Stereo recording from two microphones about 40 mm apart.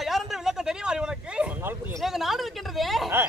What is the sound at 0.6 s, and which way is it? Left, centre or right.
Speech, centre.